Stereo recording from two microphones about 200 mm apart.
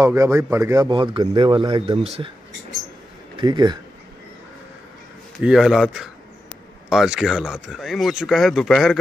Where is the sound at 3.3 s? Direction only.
20° right (ahead or behind).